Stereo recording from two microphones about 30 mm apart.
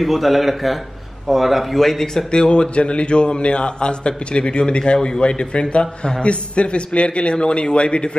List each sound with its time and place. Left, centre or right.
0.0 s speech: centre
1.8 s speech: centre
2.3 s speech: left